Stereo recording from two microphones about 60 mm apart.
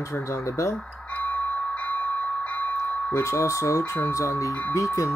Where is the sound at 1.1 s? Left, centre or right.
Left.